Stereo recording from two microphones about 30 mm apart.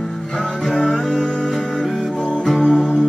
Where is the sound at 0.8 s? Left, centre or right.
Centre.